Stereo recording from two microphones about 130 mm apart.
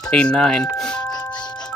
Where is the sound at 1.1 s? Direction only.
35° left (ahead or behind).